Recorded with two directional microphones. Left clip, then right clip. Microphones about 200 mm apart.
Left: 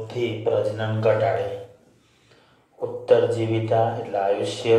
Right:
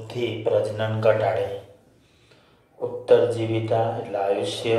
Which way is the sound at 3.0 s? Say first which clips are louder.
Even; 35° right (ahead or behind).